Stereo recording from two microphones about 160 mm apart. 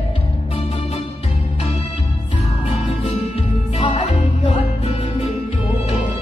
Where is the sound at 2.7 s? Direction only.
40° left (ahead or behind).